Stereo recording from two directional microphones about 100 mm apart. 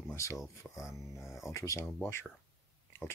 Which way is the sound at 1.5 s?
30° left (ahead or behind).